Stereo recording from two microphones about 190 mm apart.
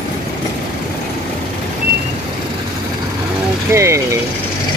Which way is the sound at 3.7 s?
15° right (ahead or behind).